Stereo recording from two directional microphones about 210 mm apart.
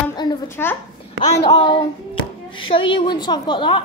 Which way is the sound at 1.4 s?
20° left (ahead or behind).